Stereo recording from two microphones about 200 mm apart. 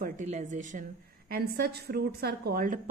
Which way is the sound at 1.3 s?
50° right (ahead or behind).